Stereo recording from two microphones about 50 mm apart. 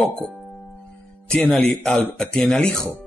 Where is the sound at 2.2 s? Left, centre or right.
Centre.